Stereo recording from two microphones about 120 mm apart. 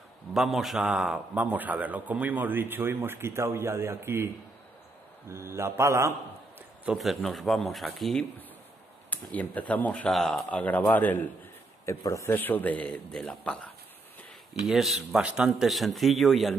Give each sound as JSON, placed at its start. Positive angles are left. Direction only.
{"t": 0.3, "sound": "a man's voice", "side_deg": 0}
{"t": 5.3, "sound": "speech", "side_deg": -20}
{"t": 7.0, "sound": "speech", "side_deg": 0}
{"t": 9.1, "sound": "a man's voice", "side_deg": 15}
{"t": 14.5, "sound": "speech", "side_deg": 0}